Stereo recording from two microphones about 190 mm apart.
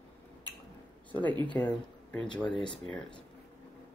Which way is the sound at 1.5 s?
5° left (ahead or behind).